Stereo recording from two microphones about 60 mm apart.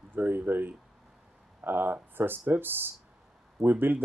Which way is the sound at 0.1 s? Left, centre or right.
Right.